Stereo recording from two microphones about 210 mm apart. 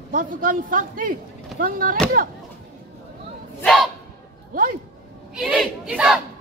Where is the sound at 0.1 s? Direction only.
40° right (ahead or behind).